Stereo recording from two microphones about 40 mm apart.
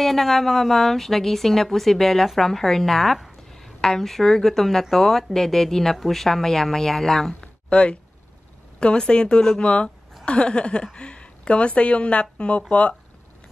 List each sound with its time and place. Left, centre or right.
0.0 s speech: centre
7.3 s a sound: left
8.7 s speech: left